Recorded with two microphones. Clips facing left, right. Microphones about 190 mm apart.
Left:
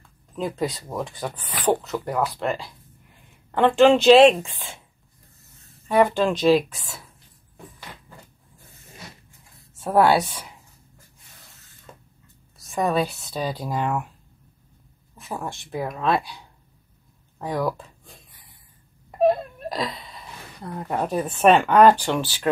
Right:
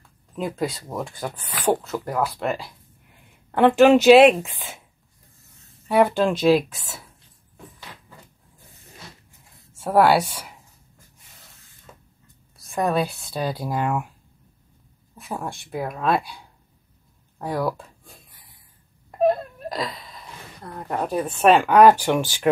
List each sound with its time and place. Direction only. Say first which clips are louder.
0.6 s speech: even; centre (ahead or behind)
5.9 s speech: right 1 dB; 5° right (ahead or behind)
9.8 s speech: right 1 dB; 5° right (ahead or behind)
12.5 s speech: even; centre (ahead or behind)
15.1 s speech: right 1 dB; centre (ahead or behind)
17.4 s speech: even; 5° right (ahead or behind)
19.0 s whimper: left 1 dB; centre (ahead or behind)
20.6 s speech: left 1 dB; 5° left (ahead or behind); by 22.5 s 15° right (ahead or behind)